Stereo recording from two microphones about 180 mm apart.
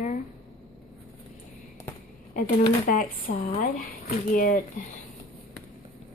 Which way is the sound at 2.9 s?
55° left (ahead or behind).